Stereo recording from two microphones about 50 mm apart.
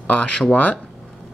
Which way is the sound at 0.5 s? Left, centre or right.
Left.